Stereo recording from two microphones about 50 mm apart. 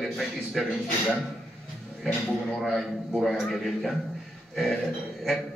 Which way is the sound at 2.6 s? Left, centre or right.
Centre.